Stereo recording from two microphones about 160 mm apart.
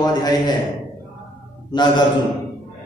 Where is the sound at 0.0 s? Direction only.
25° left (ahead or behind).